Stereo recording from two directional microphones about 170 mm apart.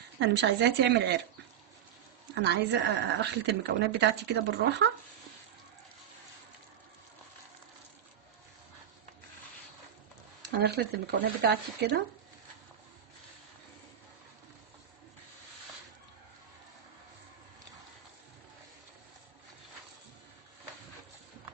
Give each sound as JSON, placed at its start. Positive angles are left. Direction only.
{"t": 0.2, "sound": "a woman's voice", "side_deg": -90}
{"t": 2.4, "sound": "a woman's voice", "side_deg": -85}
{"t": 10.4, "sound": "speech", "side_deg": -75}